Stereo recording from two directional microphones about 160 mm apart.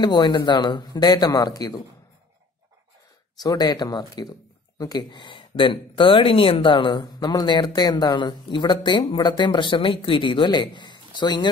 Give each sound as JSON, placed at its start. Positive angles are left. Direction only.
{"t": 0.0, "sound": "speech", "side_deg": 30}
{"t": 3.4, "sound": "speech", "side_deg": 25}